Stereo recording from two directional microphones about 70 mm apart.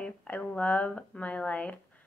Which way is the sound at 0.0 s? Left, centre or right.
Centre.